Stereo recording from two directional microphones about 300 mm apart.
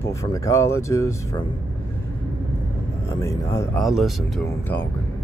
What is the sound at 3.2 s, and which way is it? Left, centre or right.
Speech, centre.